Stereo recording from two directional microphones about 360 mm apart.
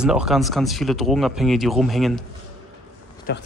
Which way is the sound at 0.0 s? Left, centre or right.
Centre.